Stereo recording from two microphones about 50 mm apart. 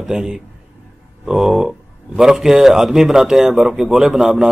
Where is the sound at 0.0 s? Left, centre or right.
Centre.